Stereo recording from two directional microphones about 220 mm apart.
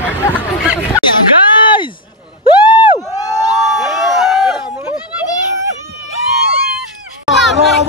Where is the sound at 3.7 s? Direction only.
Centre (ahead or behind).